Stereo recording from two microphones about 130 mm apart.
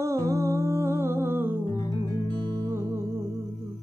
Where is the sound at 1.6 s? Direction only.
30° left (ahead or behind).